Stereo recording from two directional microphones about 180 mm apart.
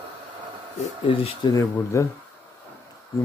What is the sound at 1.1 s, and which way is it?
Speech, 30° left (ahead or behind).